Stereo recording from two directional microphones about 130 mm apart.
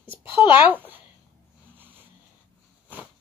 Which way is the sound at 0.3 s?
40° left (ahead or behind).